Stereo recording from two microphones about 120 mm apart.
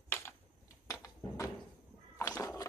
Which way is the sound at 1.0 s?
30° left (ahead or behind).